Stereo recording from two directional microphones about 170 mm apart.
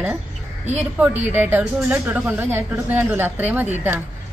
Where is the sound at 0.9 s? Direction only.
10° right (ahead or behind).